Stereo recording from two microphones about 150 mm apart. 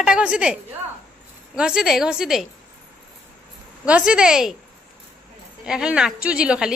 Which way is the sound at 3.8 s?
5° right (ahead or behind).